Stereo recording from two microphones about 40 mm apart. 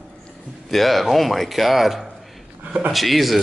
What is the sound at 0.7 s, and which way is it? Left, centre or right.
Speech, centre.